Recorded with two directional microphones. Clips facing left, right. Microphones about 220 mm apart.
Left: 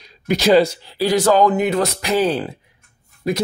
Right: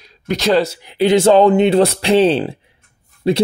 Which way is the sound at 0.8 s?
20° right (ahead or behind).